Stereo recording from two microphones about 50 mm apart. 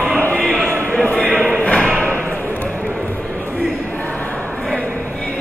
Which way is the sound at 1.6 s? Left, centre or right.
Left.